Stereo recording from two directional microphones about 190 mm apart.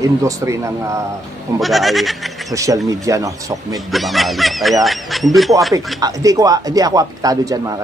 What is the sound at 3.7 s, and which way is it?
Speech, centre (ahead or behind).